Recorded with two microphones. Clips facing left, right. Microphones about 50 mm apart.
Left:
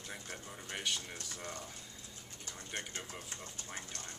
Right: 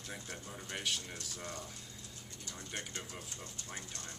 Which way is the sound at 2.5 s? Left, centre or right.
Centre.